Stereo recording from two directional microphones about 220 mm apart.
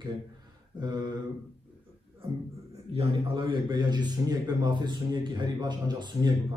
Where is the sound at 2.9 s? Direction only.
25° right (ahead or behind).